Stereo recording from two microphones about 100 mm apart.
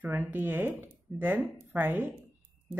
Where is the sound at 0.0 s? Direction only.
20° right (ahead or behind).